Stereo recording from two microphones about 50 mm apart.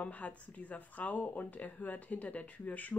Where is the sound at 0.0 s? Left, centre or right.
Left.